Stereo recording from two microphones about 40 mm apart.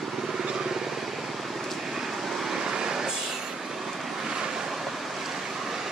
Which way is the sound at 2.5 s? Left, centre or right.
Centre.